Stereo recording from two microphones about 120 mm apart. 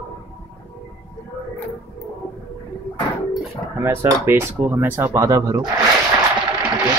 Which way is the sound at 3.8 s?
20° right (ahead or behind).